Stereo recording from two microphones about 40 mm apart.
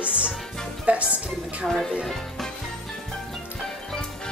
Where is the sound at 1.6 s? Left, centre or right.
Centre.